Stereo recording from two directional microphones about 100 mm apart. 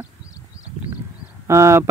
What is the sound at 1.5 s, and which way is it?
Speech, 30° right (ahead or behind).